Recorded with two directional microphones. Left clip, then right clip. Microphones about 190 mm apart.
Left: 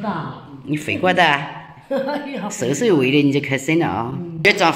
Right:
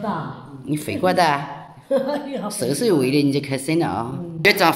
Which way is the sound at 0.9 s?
5° right (ahead or behind).